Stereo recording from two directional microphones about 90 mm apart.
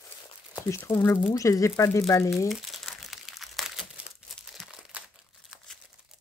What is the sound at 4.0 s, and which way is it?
Crumpling, 10° right (ahead or behind).